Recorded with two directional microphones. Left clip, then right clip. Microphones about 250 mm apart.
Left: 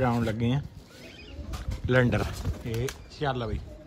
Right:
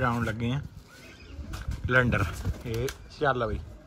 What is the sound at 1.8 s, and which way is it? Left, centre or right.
Speech, centre.